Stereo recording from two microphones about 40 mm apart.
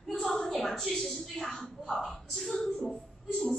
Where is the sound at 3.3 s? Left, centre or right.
Centre.